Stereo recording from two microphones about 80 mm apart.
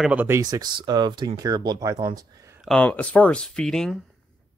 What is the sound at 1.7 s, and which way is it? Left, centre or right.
Speech, right.